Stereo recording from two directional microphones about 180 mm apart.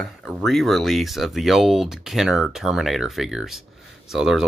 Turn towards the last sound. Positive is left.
turn(degrees=0)  # may be behind; listen again after turning